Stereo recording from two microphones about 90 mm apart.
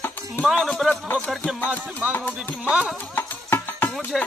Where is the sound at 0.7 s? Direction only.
5° left (ahead or behind).